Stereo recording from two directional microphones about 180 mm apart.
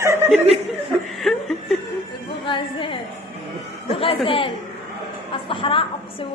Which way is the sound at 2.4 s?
30° left (ahead or behind).